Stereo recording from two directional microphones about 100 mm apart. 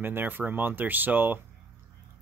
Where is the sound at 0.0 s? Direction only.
20° right (ahead or behind).